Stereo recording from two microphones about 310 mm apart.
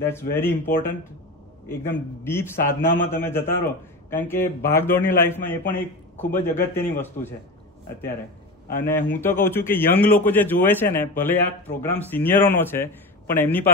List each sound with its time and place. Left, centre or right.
0.1 s speech: centre
8.8 s speech: centre